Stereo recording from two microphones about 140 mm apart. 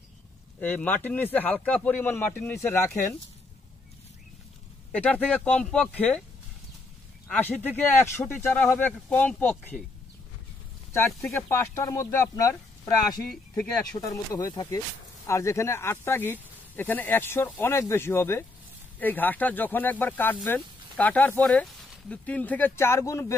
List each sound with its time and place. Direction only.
0.6 s speech: 10° left (ahead or behind)
4.9 s speech: 10° left (ahead or behind)
7.2 s speech: 10° left (ahead or behind)
11.4 s speech: 20° left (ahead or behind)